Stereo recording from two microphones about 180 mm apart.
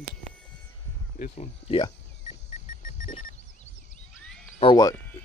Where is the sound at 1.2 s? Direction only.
35° left (ahead or behind).